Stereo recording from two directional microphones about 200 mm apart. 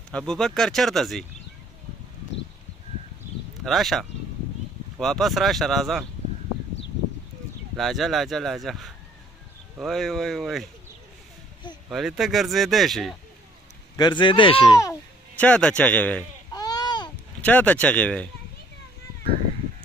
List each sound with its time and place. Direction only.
0.1 s speech: 5° left (ahead or behind)
3.6 s speech: centre (ahead or behind)
7.7 s speech: centre (ahead or behind)
11.9 s speech: centre (ahead or behind)
13.9 s speech: 20° left (ahead or behind)
16.5 s a sound: 20° left (ahead or behind)
17.4 s speech: 5° left (ahead or behind)